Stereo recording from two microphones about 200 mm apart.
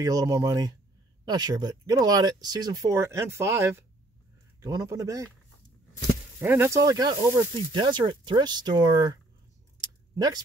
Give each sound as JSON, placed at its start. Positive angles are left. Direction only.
{"t": 0.0, "sound": "a man's voice", "side_deg": -15}
{"t": 6.4, "sound": "speech", "side_deg": -10}
{"t": 10.1, "sound": "speech", "side_deg": -20}